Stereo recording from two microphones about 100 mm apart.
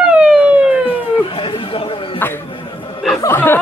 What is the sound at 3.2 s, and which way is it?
Speech, 20° left (ahead or behind).